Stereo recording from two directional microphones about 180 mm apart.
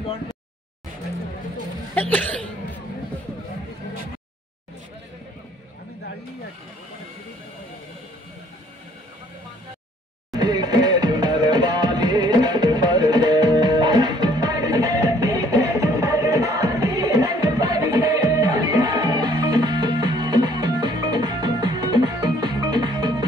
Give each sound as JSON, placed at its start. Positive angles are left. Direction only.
{"t": 2.0, "sound": "speech", "side_deg": 10}
{"t": 10.3, "sound": "music", "side_deg": -25}